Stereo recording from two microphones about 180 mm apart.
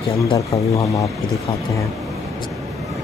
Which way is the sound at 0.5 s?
15° left (ahead or behind).